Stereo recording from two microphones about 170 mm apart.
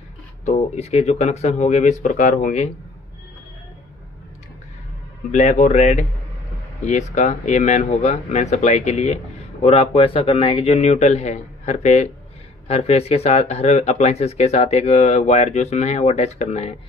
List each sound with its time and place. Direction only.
0.5 s speech: 40° left (ahead or behind)
5.3 s speech: 45° left (ahead or behind)